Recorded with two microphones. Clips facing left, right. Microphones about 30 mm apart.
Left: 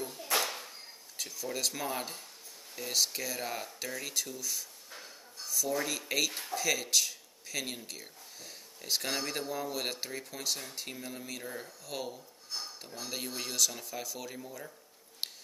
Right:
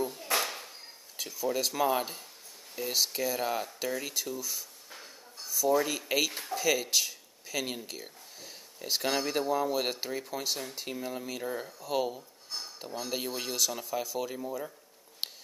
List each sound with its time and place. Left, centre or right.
0.0 s a sound: centre
1.1 s speech: centre
12.5 s dishes: centre
13.0 s speech: centre
14.4 s speech: centre
15.2 s a sound: centre